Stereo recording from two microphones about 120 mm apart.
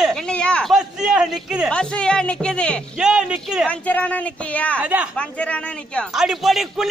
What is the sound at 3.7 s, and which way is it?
Speech, 10° left (ahead or behind).